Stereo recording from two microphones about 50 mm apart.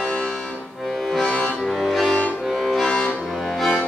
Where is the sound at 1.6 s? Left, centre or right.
Centre.